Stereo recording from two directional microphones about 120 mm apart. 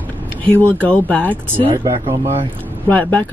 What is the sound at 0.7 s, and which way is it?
Speech, 10° left (ahead or behind).